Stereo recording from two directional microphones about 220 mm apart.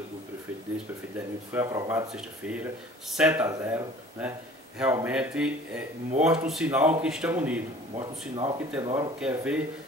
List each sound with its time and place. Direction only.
1.5 s speech: 15° right (ahead or behind)
7.9 s speech: 25° right (ahead or behind)
8.5 s speech: 15° right (ahead or behind)
9.2 s speech: 5° right (ahead or behind)